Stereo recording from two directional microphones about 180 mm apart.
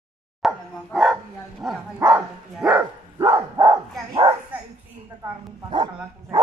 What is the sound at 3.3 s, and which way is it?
Dog, 20° right (ahead or behind).